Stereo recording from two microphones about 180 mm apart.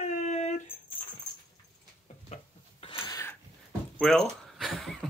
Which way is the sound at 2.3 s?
30° left (ahead or behind).